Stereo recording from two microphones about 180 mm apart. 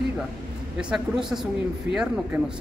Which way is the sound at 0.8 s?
5° right (ahead or behind).